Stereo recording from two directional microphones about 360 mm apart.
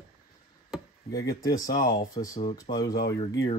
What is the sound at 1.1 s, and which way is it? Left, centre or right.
Speech, centre.